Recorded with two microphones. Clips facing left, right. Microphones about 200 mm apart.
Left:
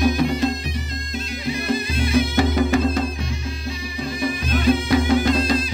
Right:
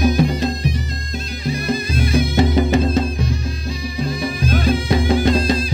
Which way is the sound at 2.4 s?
20° right (ahead or behind).